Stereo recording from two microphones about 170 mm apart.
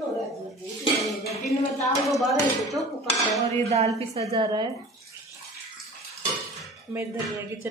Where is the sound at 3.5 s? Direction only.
40° right (ahead or behind).